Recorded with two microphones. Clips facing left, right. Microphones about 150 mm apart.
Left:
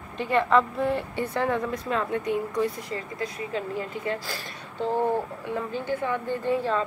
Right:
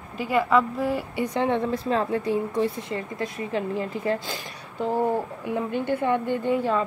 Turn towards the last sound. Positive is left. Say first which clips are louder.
# right 2 dB
turn(degrees=-15)  # may be behind; listen again after turning